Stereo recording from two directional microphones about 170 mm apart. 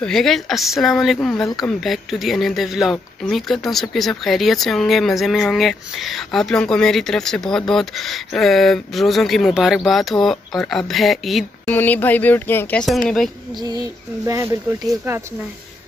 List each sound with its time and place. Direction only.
0.0 s speech: centre (ahead or behind)
11.6 s speech: 10° left (ahead or behind)
13.6 s a sound: 20° right (ahead or behind)